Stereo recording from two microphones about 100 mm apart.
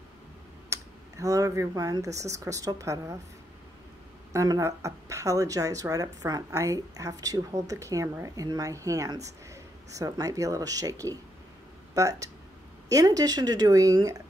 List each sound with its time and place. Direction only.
0.7 s speech: 35° right (ahead or behind)
4.3 s speech: 35° right (ahead or behind)